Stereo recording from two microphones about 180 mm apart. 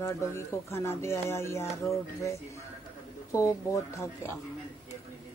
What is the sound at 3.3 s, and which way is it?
Speech, 15° left (ahead or behind).